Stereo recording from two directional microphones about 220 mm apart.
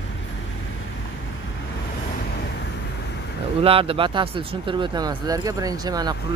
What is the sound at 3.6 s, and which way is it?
Speech, 25° right (ahead or behind).